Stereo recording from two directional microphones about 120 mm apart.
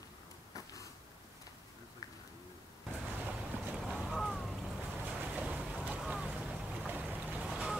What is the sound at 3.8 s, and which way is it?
Boat, centre (ahead or behind).